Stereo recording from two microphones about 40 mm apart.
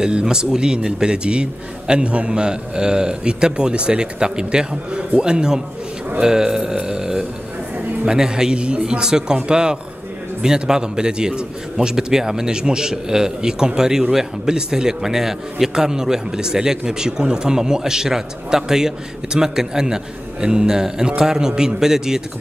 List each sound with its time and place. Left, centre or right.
0.0 s a man's voice: centre